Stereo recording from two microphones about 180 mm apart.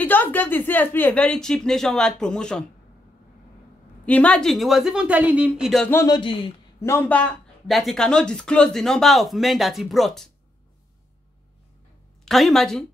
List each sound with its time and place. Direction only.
0.0 s speech: 10° left (ahead or behind)
4.0 s speech: 5° left (ahead or behind)
5.9 s speech: 15° left (ahead or behind)
6.1 s speech: 30° left (ahead or behind)
6.8 s speech: 10° left (ahead or behind)
12.3 s speech: centre (ahead or behind)